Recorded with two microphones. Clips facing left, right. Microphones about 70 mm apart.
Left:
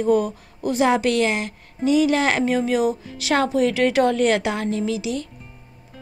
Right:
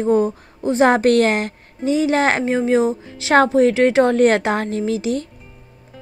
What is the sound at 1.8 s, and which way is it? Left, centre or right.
A woman's voice, right.